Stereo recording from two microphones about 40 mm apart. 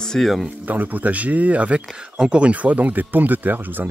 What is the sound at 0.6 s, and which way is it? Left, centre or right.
Speech, right.